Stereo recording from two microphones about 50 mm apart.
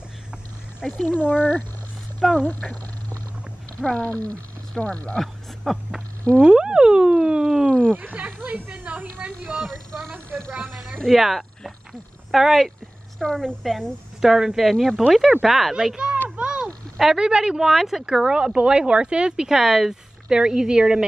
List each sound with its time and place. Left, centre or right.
0.9 s speech: left
2.2 s speech: centre
3.9 s speech: left
5.7 s speech: centre
6.4 s a sound: centre
7.9 s a sound: right
9.2 s speech: right
10.5 s snake: right
11.1 s speech: centre
13.2 s a woman's voice: centre
14.2 s speech: centre
16.3 s a sound: right
17.0 s speech: centre